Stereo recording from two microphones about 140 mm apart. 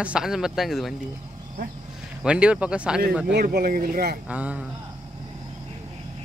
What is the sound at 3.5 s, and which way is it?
Speech, 90° right.